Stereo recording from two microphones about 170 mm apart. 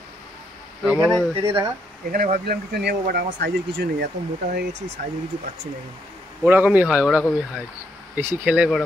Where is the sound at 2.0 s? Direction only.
55° right (ahead or behind); by 4.1 s 80° right.